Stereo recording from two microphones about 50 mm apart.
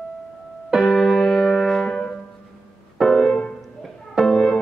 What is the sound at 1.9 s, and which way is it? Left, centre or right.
Music, centre.